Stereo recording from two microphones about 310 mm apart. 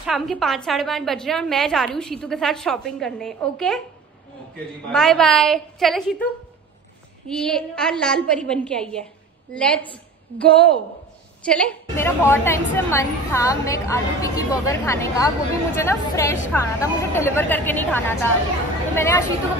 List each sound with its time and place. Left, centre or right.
0.0 s a woman's voice: centre
4.9 s a woman's voice: centre
7.2 s a woman's voice: centre